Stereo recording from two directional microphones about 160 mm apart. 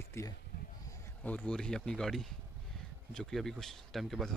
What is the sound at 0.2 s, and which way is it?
Speech, 15° left (ahead or behind).